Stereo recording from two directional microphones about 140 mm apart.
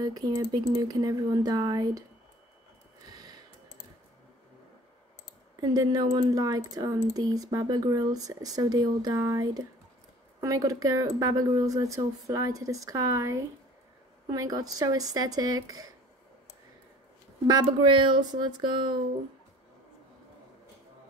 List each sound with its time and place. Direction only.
0.0 s speech: 25° right (ahead or behind)
5.6 s speech: 25° right (ahead or behind)
17.5 s speech: 35° right (ahead or behind)